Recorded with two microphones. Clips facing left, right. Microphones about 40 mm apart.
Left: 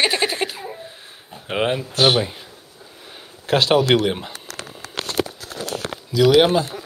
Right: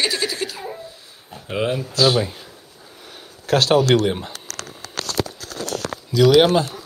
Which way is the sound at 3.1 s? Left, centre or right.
Left.